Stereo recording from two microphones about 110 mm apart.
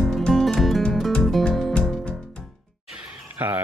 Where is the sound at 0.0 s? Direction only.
Centre (ahead or behind).